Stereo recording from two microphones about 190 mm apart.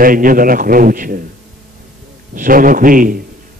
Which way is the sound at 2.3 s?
45° right (ahead or behind).